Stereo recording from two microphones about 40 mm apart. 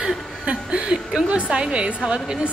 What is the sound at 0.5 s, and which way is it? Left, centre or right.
Chuckle, right.